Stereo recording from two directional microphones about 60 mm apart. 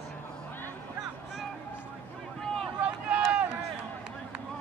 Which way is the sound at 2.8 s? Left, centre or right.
Centre.